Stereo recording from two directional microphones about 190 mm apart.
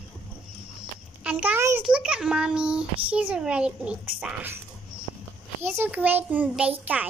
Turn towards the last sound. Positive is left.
turn(degrees=-5)  # may be behind; listen again after turning